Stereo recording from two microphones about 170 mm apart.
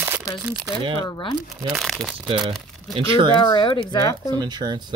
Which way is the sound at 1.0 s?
25° left (ahead or behind).